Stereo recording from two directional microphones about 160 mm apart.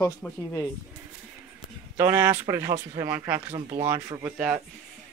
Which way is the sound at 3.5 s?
25° right (ahead or behind).